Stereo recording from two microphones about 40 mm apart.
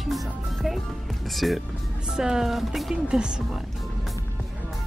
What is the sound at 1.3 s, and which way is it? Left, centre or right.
Speech, centre.